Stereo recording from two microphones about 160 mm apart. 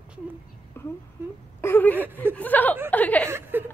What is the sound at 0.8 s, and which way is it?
A woman's voice, 15° left (ahead or behind).